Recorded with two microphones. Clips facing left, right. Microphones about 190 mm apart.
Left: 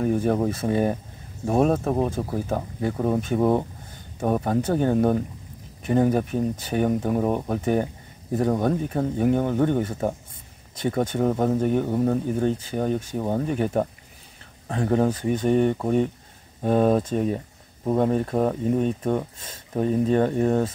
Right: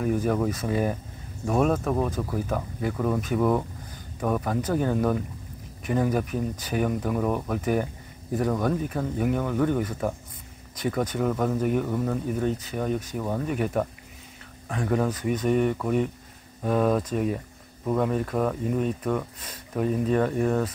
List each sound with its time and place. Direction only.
0.0 s speech: 30° left (ahead or behind)